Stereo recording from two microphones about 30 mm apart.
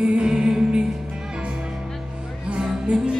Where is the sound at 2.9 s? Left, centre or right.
Right.